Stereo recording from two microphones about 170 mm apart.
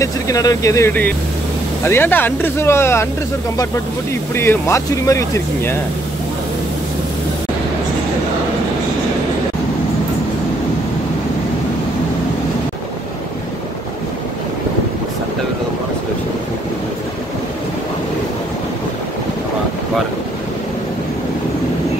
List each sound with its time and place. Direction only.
0.0 s speech: 20° left (ahead or behind)
4.1 s speech: 15° left (ahead or behind)